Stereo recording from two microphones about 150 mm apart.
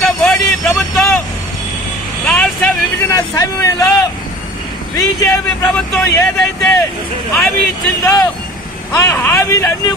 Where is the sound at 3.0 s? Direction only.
25° left (ahead or behind).